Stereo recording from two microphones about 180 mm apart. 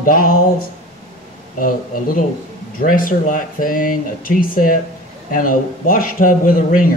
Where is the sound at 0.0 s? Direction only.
50° left (ahead or behind).